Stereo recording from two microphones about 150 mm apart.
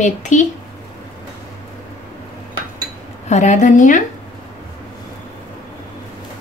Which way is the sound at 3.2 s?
55° left (ahead or behind).